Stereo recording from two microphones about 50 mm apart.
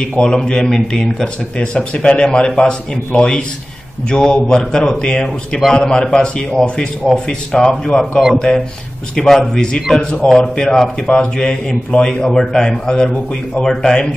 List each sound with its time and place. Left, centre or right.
0.2 s a man's voice: centre